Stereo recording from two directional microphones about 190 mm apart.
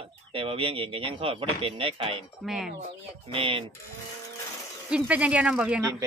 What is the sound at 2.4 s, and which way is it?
Speech, centre (ahead or behind).